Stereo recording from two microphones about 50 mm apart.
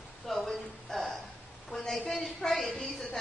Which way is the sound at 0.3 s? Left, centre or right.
Centre.